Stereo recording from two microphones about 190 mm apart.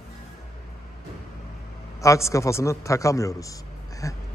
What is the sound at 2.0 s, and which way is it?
A man's voice, 15° left (ahead or behind).